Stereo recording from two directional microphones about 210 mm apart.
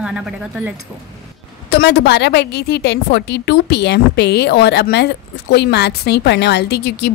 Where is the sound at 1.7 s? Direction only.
50° left (ahead or behind).